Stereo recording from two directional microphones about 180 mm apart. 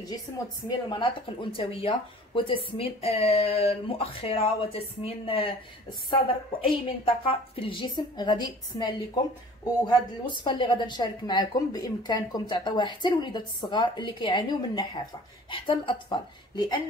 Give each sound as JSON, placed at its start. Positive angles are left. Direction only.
{"t": 0.7, "sound": "a woman's voice", "side_deg": 25}